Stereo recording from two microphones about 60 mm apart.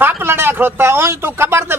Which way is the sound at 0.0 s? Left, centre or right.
Right.